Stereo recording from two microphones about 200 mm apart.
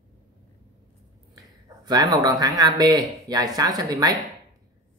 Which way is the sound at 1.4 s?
20° right (ahead or behind).